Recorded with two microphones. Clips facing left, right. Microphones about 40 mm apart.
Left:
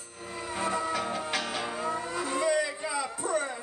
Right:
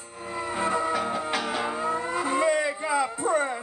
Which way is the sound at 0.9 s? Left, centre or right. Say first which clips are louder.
Right 4 dB; centre.